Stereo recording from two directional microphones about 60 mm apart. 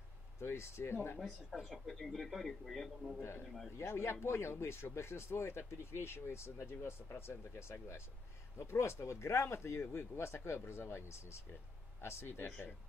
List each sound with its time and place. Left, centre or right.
0.4 s speech: left
1.2 s speech: centre
3.2 s speech: left
3.4 s speech: centre
3.7 s speech: left